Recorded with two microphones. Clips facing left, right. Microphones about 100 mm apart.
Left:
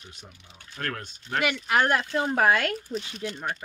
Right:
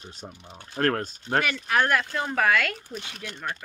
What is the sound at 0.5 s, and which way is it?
Speech, 45° right (ahead or behind).